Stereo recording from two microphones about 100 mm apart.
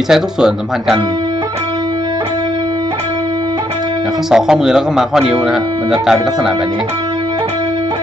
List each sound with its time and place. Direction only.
0.1 s a man's voice: 5° right (ahead or behind)
4.3 s a man's voice: 5° right (ahead or behind)